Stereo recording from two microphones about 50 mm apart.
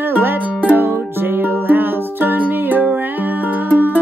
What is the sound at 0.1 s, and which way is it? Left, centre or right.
Music, right.